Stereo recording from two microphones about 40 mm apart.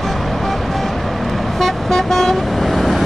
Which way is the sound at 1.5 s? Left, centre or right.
Centre.